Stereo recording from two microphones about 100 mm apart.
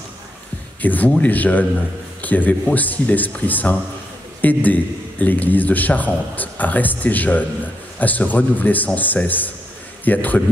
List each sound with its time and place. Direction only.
0.8 s a man's voice: 15° left (ahead or behind)